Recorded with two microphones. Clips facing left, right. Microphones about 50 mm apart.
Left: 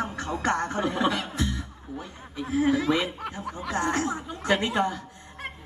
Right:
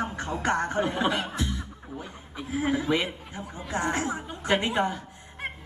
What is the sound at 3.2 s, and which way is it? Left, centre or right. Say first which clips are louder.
Chuckle: left 6 dB; left.